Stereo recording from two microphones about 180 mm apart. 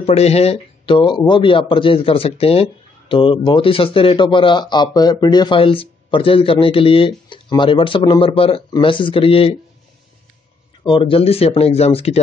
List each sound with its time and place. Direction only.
0.0 s a man's voice: 35° left (ahead or behind)
10.8 s speech: 25° left (ahead or behind)